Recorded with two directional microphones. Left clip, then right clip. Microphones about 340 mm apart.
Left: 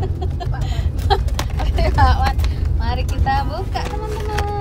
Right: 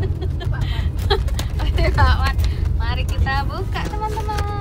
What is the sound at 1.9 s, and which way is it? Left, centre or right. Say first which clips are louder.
Vehicle: left 4 dB; centre.